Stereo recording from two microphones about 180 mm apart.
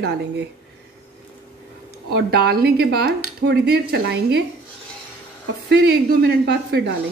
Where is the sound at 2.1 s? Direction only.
60° right (ahead or behind).